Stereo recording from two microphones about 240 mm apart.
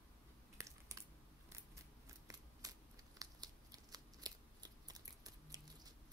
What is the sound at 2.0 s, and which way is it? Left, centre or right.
Scissors, centre.